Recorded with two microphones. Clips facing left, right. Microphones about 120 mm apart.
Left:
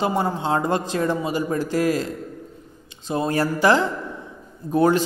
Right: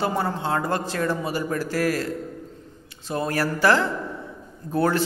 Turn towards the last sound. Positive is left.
turn(degrees=15)  # may be behind; listen again after turning